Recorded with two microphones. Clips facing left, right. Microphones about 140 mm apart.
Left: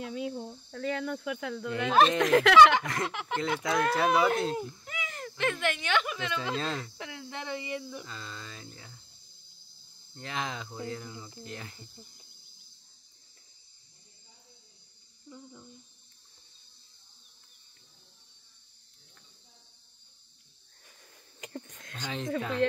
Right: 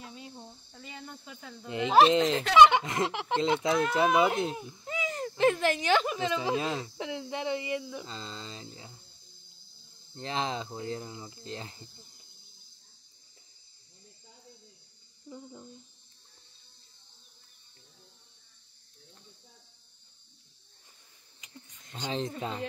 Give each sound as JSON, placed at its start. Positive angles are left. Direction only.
{"t": 0.0, "sound": "speech", "side_deg": 90}
{"t": 1.7, "sound": "speech", "side_deg": -20}
{"t": 2.3, "sound": "speech", "side_deg": 90}
{"t": 2.7, "sound": "speech", "side_deg": -20}
{"t": 4.8, "sound": "speech", "side_deg": -30}
{"t": 8.0, "sound": "speech", "side_deg": -25}
{"t": 10.1, "sound": "speech", "side_deg": -30}
{"t": 15.2, "sound": "speech", "side_deg": -20}
{"t": 21.4, "sound": "a sound", "side_deg": 60}
{"t": 22.6, "sound": "speech", "side_deg": 90}